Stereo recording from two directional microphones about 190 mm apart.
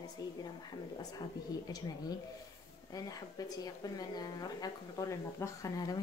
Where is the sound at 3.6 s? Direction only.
20° left (ahead or behind).